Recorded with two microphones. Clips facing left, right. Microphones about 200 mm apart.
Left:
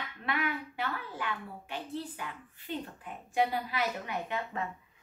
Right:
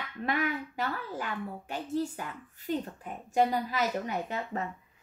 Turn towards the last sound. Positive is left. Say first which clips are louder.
# right 2 dB
turn(degrees=-40)  # may be behind; listen again after turning